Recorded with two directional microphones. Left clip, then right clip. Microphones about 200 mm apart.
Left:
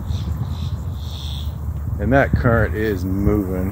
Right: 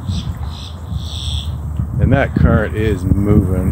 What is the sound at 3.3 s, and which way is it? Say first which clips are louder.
Speech: right 4 dB; 20° right (ahead or behind).